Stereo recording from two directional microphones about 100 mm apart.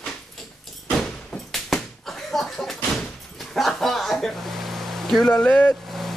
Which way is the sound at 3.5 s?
5° left (ahead or behind).